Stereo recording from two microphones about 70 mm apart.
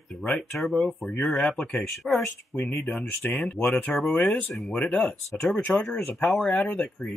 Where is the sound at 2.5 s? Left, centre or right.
Left.